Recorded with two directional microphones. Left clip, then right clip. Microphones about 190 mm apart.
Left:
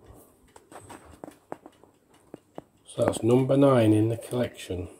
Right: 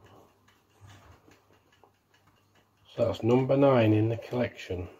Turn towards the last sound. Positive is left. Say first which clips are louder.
# left 1 dB
turn(degrees=10)  # may be behind; listen again after turning